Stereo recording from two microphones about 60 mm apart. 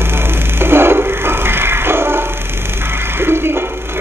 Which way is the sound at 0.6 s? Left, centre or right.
Right.